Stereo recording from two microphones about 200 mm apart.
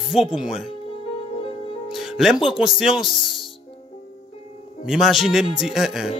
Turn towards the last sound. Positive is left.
turn(degrees=0)  # may be behind; listen again after turning